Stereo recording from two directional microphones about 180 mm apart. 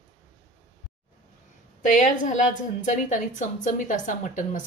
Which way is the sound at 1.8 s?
45° left (ahead or behind).